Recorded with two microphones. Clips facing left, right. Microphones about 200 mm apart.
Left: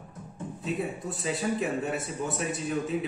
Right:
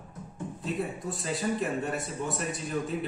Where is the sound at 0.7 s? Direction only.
Centre (ahead or behind).